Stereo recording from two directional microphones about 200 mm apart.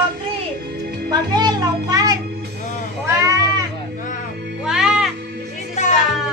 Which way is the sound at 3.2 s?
15° right (ahead or behind).